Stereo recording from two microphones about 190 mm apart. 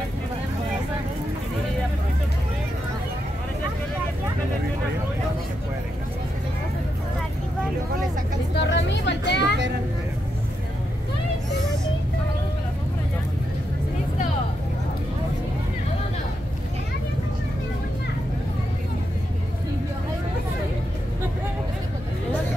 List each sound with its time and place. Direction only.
8.5 s vehicle: 70° left (ahead or behind)